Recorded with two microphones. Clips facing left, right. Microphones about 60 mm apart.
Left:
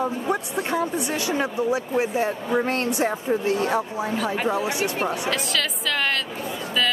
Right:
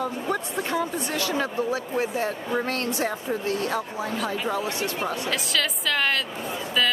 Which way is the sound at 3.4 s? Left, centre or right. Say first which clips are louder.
Left 3 dB; left.